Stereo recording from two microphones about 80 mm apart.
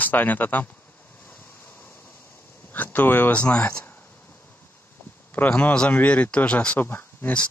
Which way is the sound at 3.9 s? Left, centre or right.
Left.